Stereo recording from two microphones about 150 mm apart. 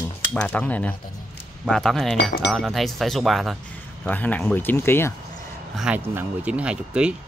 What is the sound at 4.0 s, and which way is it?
Speech, 10° left (ahead or behind).